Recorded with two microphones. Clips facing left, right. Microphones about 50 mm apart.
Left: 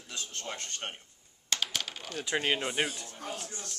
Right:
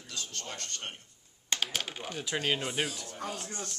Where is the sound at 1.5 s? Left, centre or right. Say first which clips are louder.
Right 1 dB; centre.